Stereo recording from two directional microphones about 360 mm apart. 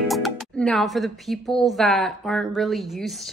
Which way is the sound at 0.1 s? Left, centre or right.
Centre.